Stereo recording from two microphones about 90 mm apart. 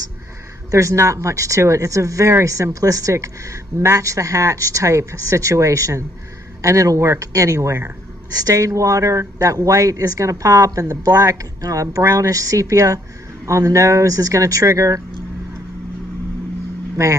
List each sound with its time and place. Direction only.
0.7 s speech: 35° right (ahead or behind)